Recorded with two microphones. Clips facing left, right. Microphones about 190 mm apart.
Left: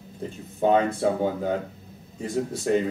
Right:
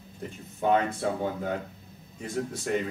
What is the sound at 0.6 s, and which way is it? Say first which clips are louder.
A man's voice: left 4 dB; 30° left (ahead or behind).